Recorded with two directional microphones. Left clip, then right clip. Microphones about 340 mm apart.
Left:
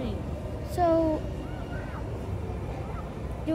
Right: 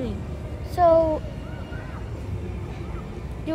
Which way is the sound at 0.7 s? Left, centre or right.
Centre.